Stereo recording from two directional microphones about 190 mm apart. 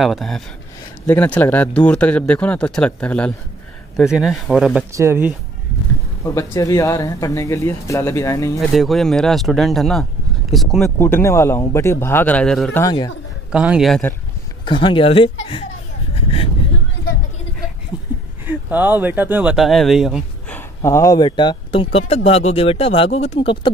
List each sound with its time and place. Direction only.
0.0 s speech: centre (ahead or behind)
4.9 s speech: 15° right (ahead or behind)
6.2 s speech: 15° left (ahead or behind)
8.5 s speech: centre (ahead or behind)
11.0 s speech: 10° left (ahead or behind)
12.8 s speech: 20° left (ahead or behind)
13.5 s speech: 5° right (ahead or behind)
14.6 s speech: 25° left (ahead or behind)
17.9 s a sound: 20° left (ahead or behind)
18.5 s speech: 10° right (ahead or behind)
20.5 s speech: 15° left (ahead or behind)